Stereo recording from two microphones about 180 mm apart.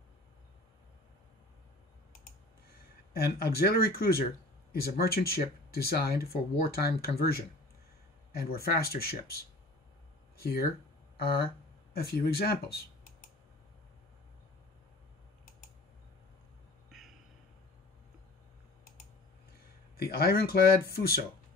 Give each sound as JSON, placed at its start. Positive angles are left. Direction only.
{"t": 3.1, "sound": "speech", "side_deg": 60}
{"t": 10.4, "sound": "speech", "side_deg": 55}
{"t": 20.0, "sound": "speech", "side_deg": 60}